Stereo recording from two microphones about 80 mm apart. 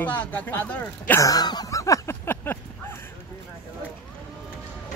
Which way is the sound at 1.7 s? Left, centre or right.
Left.